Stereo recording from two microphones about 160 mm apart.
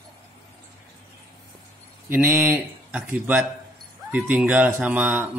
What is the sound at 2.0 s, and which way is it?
Speech, 10° right (ahead or behind).